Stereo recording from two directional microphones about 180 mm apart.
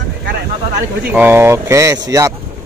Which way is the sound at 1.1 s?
10° right (ahead or behind).